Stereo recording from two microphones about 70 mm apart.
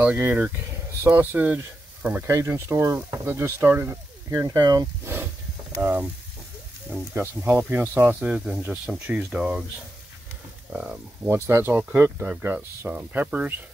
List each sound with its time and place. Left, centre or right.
0.2 s speech: right
2.2 s speech: right
4.4 s speech: right
5.0 s a sound: right
5.8 s speech: centre
6.9 s speech: right
8.6 s speech: centre
10.7 s speech: centre
11.2 s speech: right